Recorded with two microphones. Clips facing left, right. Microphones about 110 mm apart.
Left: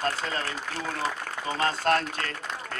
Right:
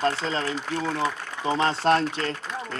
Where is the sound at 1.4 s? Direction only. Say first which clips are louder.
Right 4 dB; 25° right (ahead or behind).